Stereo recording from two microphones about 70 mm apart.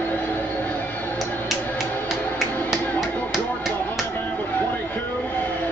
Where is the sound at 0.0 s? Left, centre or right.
Left.